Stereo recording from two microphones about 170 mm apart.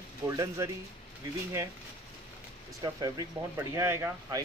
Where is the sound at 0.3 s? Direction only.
20° right (ahead or behind).